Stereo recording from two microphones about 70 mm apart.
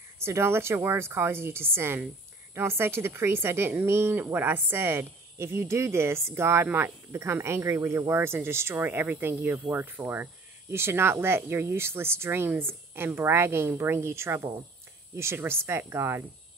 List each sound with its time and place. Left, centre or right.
0.2 s speech: right